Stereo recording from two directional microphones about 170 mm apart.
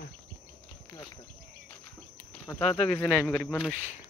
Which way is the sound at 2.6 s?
5° left (ahead or behind).